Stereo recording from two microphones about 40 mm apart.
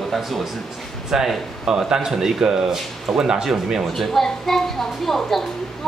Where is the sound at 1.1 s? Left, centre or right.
Centre.